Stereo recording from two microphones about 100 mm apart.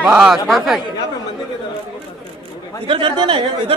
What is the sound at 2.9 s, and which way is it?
Speech, 60° right (ahead or behind).